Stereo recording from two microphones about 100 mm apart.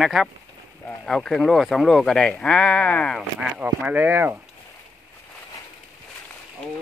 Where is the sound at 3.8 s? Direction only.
20° right (ahead or behind).